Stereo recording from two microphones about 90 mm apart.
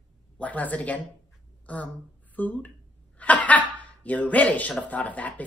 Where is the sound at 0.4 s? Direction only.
15° left (ahead or behind).